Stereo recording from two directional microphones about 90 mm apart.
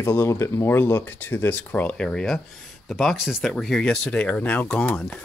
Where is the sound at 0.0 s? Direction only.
30° left (ahead or behind).